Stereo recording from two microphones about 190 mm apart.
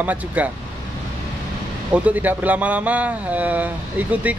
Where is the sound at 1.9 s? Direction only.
10° right (ahead or behind).